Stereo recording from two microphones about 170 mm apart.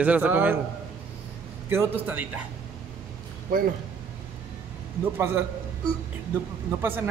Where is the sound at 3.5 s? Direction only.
55° right (ahead or behind).